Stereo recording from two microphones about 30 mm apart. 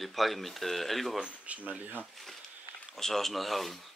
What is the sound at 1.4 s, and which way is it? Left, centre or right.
Speech, right.